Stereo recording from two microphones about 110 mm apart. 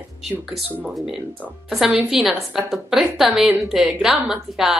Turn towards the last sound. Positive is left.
turn(degrees=-5)  # may be behind; listen again after turning